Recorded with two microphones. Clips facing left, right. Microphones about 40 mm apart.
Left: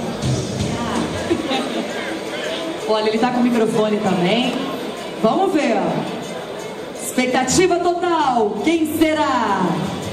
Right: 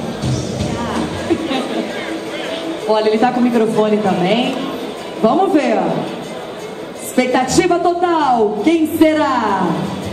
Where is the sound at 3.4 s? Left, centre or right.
Centre.